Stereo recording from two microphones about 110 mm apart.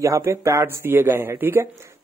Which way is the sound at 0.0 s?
25° right (ahead or behind).